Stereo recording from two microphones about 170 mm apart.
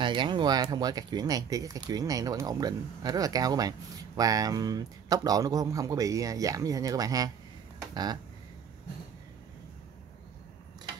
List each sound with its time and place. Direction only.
0.0 s speech: 25° right (ahead or behind)